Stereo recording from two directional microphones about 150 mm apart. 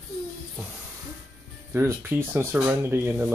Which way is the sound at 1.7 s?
15° right (ahead or behind).